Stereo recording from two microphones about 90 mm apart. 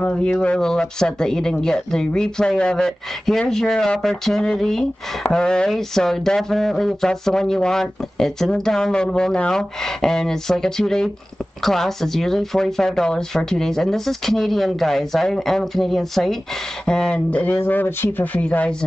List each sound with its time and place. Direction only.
0.0 s speech: 10° left (ahead or behind)